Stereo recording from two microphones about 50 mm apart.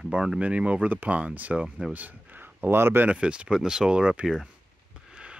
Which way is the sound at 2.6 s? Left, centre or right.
Right.